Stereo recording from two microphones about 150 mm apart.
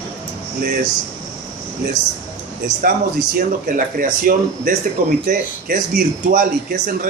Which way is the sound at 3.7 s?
70° right (ahead or behind).